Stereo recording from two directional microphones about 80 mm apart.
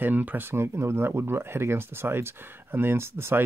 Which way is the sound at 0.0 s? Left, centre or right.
Right.